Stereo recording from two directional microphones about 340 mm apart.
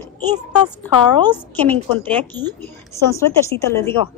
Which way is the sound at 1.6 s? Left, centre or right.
Centre.